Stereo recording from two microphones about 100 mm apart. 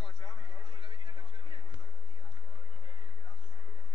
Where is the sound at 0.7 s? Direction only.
65° right (ahead or behind).